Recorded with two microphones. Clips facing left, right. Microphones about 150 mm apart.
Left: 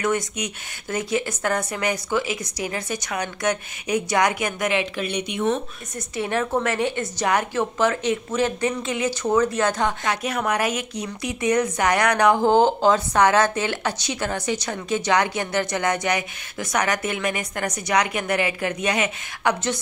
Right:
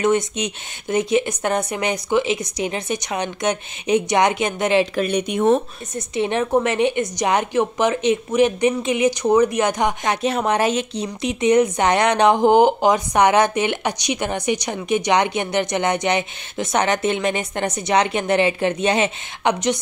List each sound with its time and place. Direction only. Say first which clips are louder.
0.0 s a woman's voice: right 5 dB; 20° right (ahead or behind)
4.9 s speech: right 6 dB; 45° right (ahead or behind)
5.9 s a woman's voice: right 4 dB; 20° right (ahead or behind)